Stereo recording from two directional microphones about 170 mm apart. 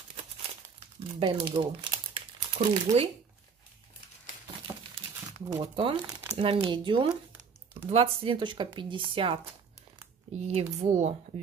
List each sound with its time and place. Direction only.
0.7 s crumpling: 30° right (ahead or behind)
5.5 s speech: 30° right (ahead or behind)
6.0 s crumpling: 20° right (ahead or behind)
6.3 s speech: 35° right (ahead or behind)